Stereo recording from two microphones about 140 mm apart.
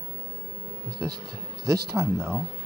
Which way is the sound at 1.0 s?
15° right (ahead or behind).